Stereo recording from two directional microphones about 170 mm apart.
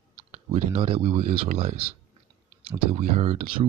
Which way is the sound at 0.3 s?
40° right (ahead or behind).